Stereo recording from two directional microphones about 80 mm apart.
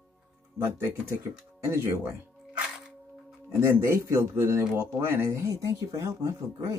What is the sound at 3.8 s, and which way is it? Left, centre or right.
Speech, right.